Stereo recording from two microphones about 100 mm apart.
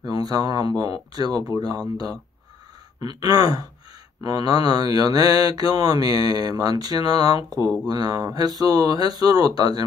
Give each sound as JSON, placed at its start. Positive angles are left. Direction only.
{"t": 0.0, "sound": "speech", "side_deg": -40}
{"t": 0.7, "sound": "mantra", "side_deg": -40}
{"t": 3.0, "sound": "mantra", "side_deg": -40}